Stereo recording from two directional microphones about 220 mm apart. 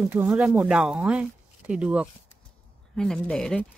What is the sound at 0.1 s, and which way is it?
Speech, 5° right (ahead or behind).